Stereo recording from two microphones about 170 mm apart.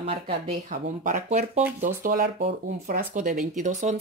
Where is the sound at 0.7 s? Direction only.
50° right (ahead or behind).